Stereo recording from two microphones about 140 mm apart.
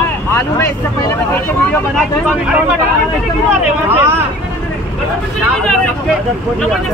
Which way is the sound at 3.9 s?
15° right (ahead or behind).